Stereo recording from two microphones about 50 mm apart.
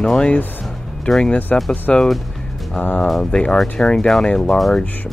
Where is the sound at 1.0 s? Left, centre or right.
Centre.